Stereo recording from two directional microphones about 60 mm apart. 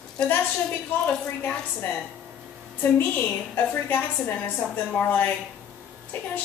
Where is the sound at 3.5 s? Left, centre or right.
Left.